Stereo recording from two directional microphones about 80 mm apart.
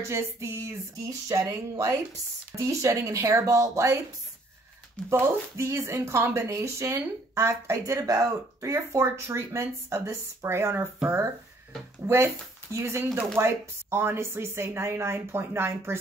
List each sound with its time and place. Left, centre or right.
0.0 s speech: right
5.2 s speech: right
12.0 s speech: right
12.7 s speech: right